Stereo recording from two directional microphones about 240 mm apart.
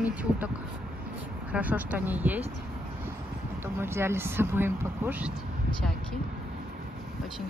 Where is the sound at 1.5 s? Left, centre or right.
Centre.